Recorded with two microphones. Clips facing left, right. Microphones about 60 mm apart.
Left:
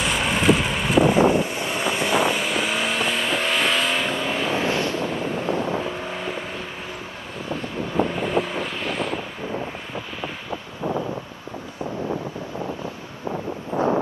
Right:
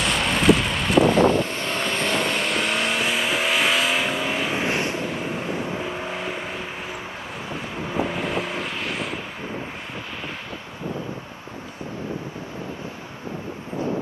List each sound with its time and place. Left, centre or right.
0.0 s vehicle: centre
4.6 s vehicle: right
5.0 s vehicle: centre
7.9 s vehicle: centre
13.7 s wind: left